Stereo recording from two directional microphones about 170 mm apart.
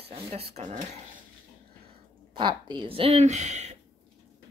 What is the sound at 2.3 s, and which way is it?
Speech, 25° right (ahead or behind).